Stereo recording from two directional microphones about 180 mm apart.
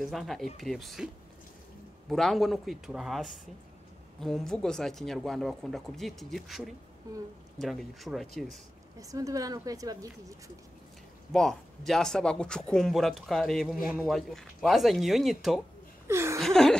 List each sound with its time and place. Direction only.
0.0 s speech: centre (ahead or behind)
9.0 s a woman's voice: 20° right (ahead or behind)
11.3 s speech: centre (ahead or behind)
16.1 s speech: 15° right (ahead or behind)
16.3 s speech: centre (ahead or behind)